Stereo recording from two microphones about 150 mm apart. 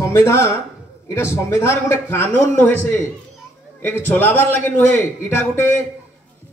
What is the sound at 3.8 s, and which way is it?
A man's voice, 15° left (ahead or behind).